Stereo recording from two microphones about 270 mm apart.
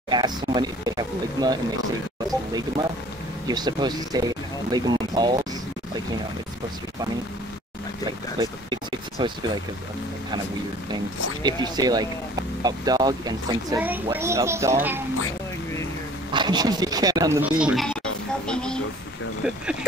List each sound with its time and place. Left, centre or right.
0.1 s speech: centre
3.4 s speech: centre
9.2 s speech: centre
11.4 s speech: centre
16.3 s speech: centre